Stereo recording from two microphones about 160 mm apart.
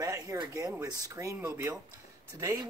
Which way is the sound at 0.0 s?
20° right (ahead or behind).